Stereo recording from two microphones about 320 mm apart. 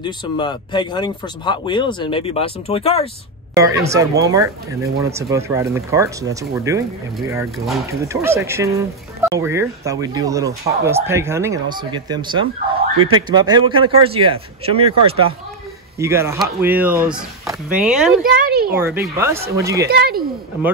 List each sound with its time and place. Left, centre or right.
0.0 s speech: centre
3.5 s speech: centre
18.2 s a sound: right
18.8 s speech: centre
19.9 s speech: right